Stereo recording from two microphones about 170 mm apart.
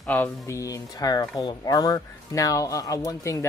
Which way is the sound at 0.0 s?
10° left (ahead or behind).